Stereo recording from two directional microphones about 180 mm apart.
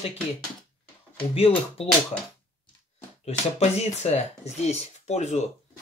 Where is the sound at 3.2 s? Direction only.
35° left (ahead or behind).